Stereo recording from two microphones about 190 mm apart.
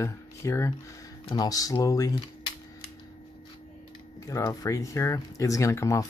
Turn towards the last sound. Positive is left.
turn(degrees=15)  # may be behind; listen again after turning